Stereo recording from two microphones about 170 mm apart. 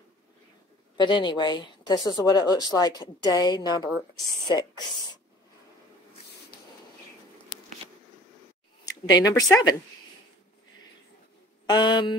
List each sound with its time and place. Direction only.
0.9 s a woman's voice: 25° left (ahead or behind)
6.5 s a sound: 65° left (ahead or behind)
9.0 s a woman's voice: 20° left (ahead or behind)
11.6 s mantra: 25° left (ahead or behind)